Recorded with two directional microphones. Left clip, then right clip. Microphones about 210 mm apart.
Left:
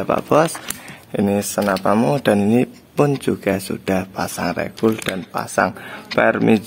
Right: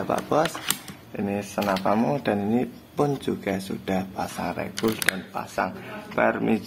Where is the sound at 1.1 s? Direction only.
60° left (ahead or behind).